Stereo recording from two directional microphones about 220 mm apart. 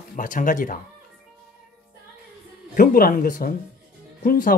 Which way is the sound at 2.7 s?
40° left (ahead or behind).